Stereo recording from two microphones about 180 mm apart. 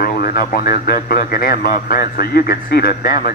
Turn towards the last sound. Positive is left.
turn(degrees=55)  # may be behind; listen again after turning